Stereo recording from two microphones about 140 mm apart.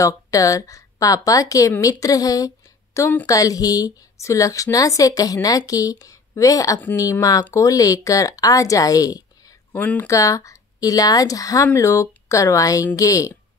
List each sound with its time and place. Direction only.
0.0 s a woman's voice: 25° left (ahead or behind)